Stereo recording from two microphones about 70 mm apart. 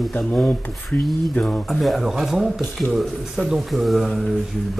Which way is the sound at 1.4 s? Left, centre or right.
Centre.